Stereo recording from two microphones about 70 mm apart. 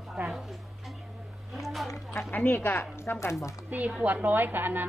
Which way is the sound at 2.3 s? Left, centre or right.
Left.